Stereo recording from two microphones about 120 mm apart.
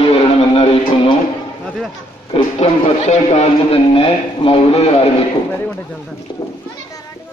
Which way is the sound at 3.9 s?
50° left (ahead or behind).